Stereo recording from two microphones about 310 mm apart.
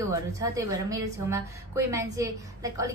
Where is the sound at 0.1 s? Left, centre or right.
Centre.